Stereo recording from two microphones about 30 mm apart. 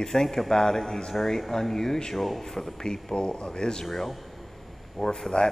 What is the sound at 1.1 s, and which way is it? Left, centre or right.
Speech, centre.